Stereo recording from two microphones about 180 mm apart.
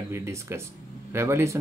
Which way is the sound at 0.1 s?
15° right (ahead or behind).